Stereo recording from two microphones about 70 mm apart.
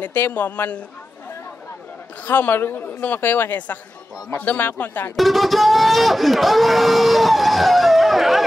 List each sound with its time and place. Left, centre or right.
0.0 s speech: left
2.2 s speech: left
5.1 s speech: centre